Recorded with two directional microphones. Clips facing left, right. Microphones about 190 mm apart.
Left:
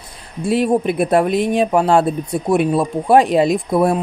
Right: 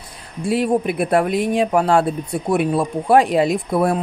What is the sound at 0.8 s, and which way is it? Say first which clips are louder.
Speech: left 2 dB; 25° left (ahead or behind).